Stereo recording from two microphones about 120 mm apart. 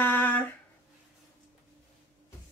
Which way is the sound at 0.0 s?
15° left (ahead or behind).